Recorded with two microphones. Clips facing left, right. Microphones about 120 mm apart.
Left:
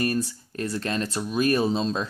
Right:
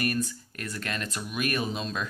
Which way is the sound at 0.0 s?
30° left (ahead or behind).